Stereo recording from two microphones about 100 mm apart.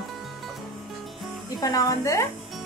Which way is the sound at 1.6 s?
35° left (ahead or behind).